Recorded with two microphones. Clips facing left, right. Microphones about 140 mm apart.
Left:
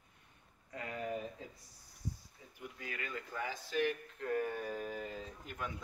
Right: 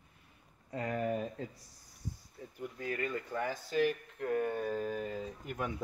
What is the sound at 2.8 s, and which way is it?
Speech, 40° right (ahead or behind).